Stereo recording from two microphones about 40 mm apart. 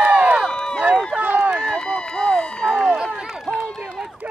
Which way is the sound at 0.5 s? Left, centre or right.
Left.